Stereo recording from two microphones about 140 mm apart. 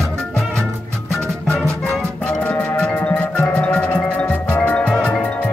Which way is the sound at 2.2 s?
10° left (ahead or behind).